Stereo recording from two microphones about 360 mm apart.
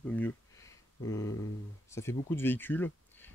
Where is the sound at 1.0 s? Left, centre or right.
Centre.